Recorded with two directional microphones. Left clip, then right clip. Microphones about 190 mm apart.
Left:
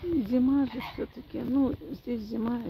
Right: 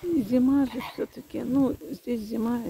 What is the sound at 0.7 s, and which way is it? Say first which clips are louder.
Speech: right 3 dB; 60° right (ahead or behind).